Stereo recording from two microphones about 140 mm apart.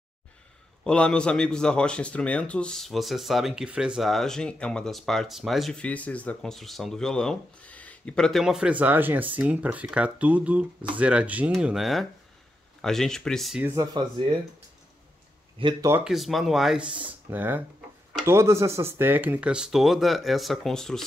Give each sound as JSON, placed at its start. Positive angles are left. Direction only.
{"t": 0.8, "sound": "speech", "side_deg": 5}
{"t": 13.6, "sound": "speech", "side_deg": -15}
{"t": 15.6, "sound": "speech", "side_deg": -40}
{"t": 16.0, "sound": "speech", "side_deg": 0}